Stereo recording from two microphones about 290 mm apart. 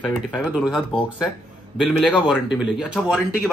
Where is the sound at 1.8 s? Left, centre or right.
Centre.